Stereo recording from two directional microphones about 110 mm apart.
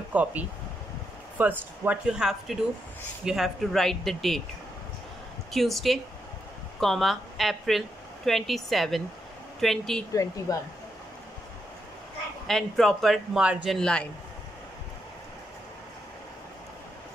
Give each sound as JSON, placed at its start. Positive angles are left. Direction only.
{"t": 0.1, "sound": "speech", "side_deg": -15}
{"t": 5.5, "sound": "speech", "side_deg": 0}
{"t": 10.1, "sound": "a woman's voice", "side_deg": 30}
{"t": 12.4, "sound": "speech", "side_deg": 5}
{"t": 13.4, "sound": "speech", "side_deg": -10}
{"t": 13.7, "sound": "a man's voice", "side_deg": 5}